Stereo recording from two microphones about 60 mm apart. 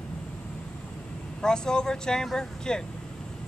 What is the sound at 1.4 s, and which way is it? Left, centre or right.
Speech, centre.